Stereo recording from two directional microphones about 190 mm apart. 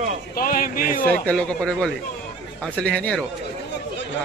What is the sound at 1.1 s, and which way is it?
Speech, 5° left (ahead or behind).